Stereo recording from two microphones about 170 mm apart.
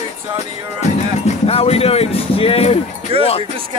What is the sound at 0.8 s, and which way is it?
Music, 40° left (ahead or behind).